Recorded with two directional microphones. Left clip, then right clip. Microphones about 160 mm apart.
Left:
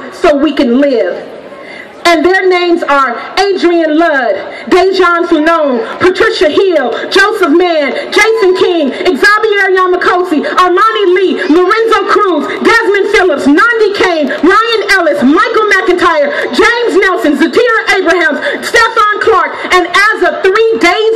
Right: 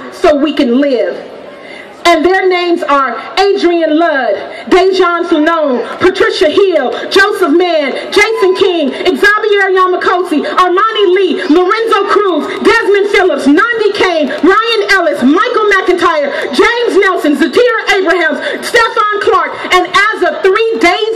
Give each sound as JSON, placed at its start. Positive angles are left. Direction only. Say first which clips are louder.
{"t": 0.2, "sound": "a man's voice", "louder": "left 1 dB", "side_deg": 25}
{"t": 2.0, "sound": "a man's voice", "louder": "left 1 dB", "side_deg": 25}